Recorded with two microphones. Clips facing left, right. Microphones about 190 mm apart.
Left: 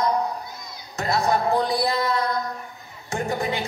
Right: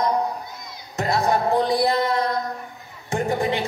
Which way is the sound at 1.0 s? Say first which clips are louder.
Right 1 dB; 30° right (ahead or behind).